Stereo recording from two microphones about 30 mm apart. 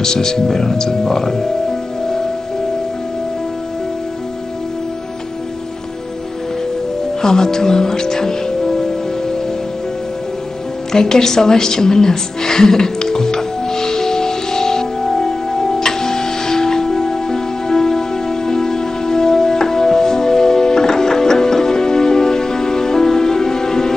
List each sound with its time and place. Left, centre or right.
0.0 s speech: centre
7.2 s music: centre
10.9 s music: centre